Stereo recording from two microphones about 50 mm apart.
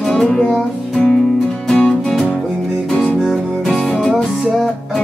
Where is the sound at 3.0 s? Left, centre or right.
Centre.